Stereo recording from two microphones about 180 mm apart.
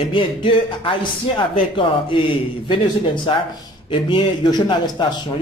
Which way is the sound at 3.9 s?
25° left (ahead or behind).